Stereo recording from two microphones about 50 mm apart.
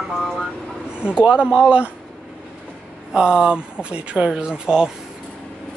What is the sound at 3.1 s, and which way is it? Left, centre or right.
Speech, centre.